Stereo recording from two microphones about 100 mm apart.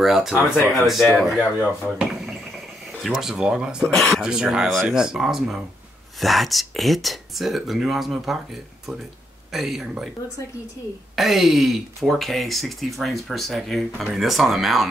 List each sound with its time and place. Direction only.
0.0 s speech: 5° right (ahead or behind)
9.5 s speech: centre (ahead or behind)
11.1 s speech: 5° right (ahead or behind)